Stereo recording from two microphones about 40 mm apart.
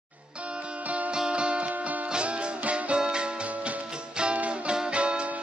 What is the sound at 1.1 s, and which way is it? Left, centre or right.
Music, right.